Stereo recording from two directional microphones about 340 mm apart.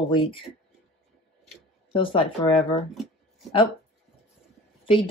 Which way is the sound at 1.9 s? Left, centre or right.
Centre.